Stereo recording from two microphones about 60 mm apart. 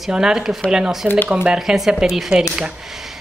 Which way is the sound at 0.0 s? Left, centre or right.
Centre.